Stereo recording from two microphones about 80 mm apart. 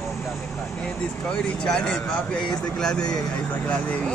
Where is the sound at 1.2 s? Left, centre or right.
Centre.